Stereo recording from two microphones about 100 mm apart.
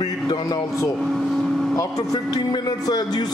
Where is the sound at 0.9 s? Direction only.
Centre (ahead or behind).